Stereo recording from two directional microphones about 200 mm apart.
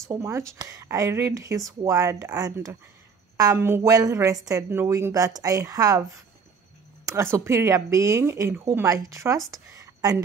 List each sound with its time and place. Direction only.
0.1 s a woman's voice: 15° right (ahead or behind)
7.3 s a woman's voice: 15° right (ahead or behind)